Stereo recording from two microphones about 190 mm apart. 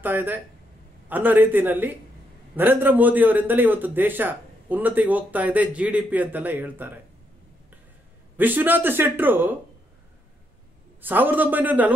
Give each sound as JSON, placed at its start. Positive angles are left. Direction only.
{"t": 0.0, "sound": "a man's voice", "side_deg": -10}
{"t": 8.4, "sound": "a man's voice", "side_deg": -10}
{"t": 11.0, "sound": "a man's voice", "side_deg": -10}